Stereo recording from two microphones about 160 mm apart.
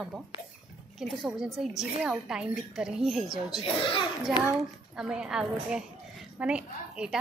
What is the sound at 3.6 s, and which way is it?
Speech, 30° left (ahead or behind).